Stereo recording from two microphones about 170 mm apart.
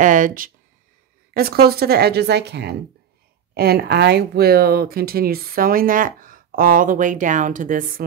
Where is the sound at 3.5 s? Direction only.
65° right (ahead or behind).